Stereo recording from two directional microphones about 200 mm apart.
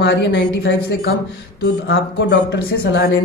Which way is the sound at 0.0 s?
60° left (ahead or behind).